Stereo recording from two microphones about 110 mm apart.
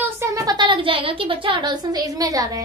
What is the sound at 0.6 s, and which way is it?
A woman's voice, 50° right (ahead or behind).